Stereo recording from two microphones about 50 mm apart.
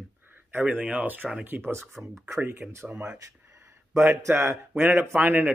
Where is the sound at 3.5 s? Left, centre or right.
Right.